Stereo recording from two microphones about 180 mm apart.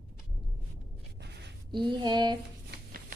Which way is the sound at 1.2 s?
70° right (ahead or behind).